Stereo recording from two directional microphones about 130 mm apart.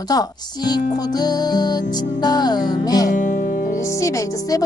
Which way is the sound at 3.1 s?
90° left.